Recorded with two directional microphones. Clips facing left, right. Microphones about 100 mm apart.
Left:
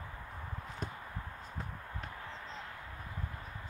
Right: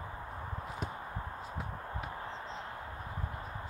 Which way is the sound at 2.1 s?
30° right (ahead or behind).